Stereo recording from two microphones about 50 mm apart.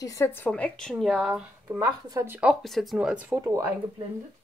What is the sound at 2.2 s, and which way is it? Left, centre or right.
Speech, right.